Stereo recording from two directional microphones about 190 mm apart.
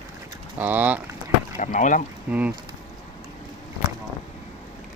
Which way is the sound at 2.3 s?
10° right (ahead or behind).